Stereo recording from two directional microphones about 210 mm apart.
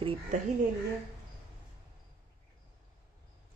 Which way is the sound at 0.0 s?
25° right (ahead or behind).